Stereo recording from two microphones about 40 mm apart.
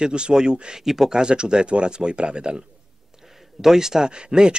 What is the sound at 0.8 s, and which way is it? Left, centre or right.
A man's voice, centre.